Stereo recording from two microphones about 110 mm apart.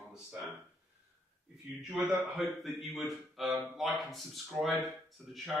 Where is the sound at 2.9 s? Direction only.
Centre (ahead or behind).